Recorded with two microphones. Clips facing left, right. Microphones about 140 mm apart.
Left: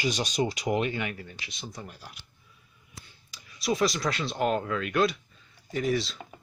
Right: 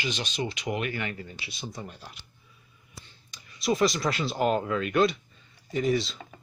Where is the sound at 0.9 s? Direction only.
15° left (ahead or behind).